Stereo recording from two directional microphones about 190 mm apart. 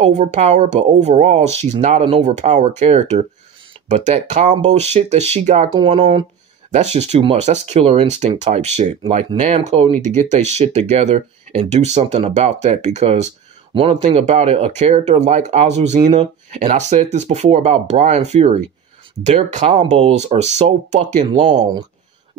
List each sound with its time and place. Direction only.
0.0 s speech: 40° right (ahead or behind)
6.7 s speech: 35° right (ahead or behind)